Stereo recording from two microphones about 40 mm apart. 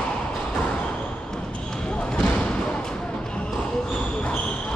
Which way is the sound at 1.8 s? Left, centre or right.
Centre.